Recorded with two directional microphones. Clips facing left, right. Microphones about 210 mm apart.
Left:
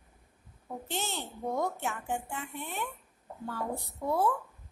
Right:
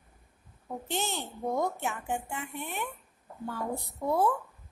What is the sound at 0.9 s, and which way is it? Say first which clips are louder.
A woman's voice: right 3 dB; 15° right (ahead or behind).